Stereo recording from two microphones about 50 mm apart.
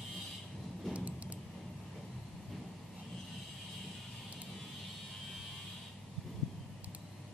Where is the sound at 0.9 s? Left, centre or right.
Right.